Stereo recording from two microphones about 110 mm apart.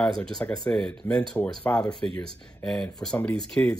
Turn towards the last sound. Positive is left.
turn(degrees=5)  # may be behind; listen again after turning